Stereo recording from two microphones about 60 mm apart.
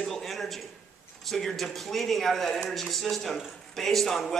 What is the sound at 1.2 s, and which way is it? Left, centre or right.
A man's voice, centre.